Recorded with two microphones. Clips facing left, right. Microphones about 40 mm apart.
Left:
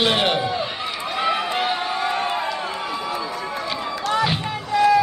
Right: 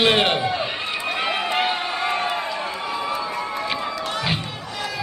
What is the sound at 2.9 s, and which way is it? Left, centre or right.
Run, centre.